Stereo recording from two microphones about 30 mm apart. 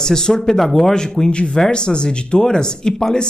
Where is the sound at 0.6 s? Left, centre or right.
Centre.